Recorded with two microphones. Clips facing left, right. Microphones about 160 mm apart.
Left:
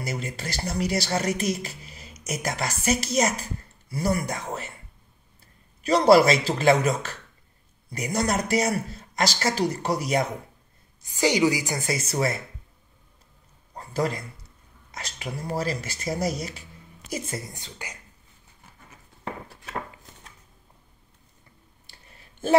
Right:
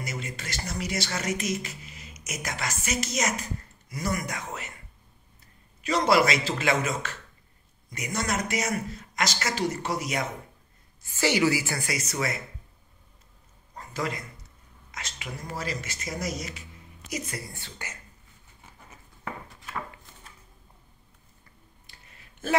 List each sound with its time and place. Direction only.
0.0 s speech: 35° left (ahead or behind)
5.9 s speech: 35° left (ahead or behind)
11.0 s speech: 15° left (ahead or behind)
13.7 s a man's voice: 35° left (ahead or behind); by 17.9 s 15° left (ahead or behind)